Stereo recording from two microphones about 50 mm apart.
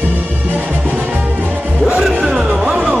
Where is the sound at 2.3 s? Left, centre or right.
Centre.